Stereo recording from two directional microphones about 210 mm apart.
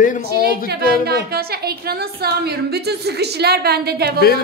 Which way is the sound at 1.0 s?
50° right (ahead or behind).